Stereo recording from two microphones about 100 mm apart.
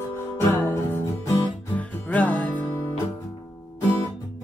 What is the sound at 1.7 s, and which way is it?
Music, 15° left (ahead or behind).